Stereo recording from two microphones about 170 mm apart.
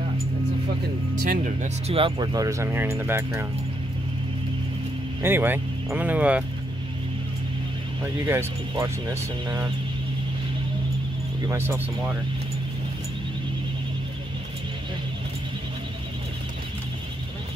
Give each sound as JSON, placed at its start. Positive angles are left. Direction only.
{"t": 1.2, "sound": "speech", "side_deg": -50}
{"t": 5.2, "sound": "speech", "side_deg": -10}
{"t": 8.3, "sound": "speech", "side_deg": -15}
{"t": 11.4, "sound": "speech", "side_deg": -15}